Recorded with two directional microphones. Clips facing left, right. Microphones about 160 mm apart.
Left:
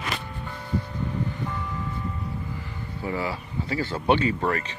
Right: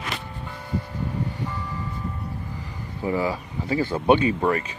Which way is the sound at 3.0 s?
15° right (ahead or behind).